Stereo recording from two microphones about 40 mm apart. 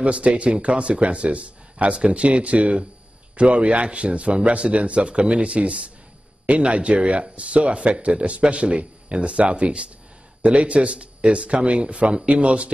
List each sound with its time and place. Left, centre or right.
0.0 s speech: right